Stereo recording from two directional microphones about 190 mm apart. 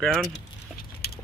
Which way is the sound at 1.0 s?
55° left (ahead or behind).